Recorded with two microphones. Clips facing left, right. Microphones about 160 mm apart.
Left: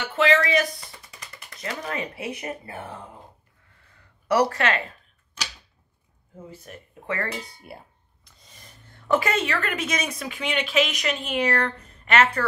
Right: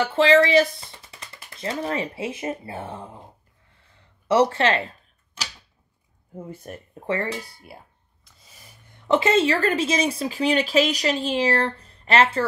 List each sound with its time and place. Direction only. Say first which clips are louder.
0.0 s speech: right 5 dB; 30° right (ahead or behind)
4.0 s a sound: right 3 dB; 25° right (ahead or behind)
6.3 s speech: right 5 dB; 50° right (ahead or behind)
7.6 s speech: left 2 dB; centre (ahead or behind); by 12.4 s 30° right (ahead or behind)